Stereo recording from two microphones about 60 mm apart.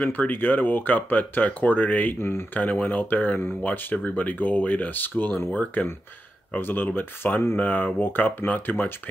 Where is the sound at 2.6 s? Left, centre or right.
Left.